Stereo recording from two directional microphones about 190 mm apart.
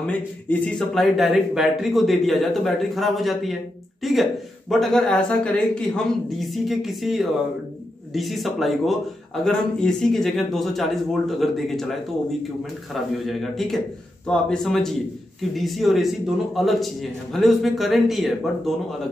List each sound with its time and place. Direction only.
0.0 s speech: 5° left (ahead or behind)